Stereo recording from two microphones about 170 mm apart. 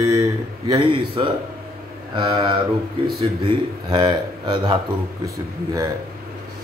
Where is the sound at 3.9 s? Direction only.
25° right (ahead or behind).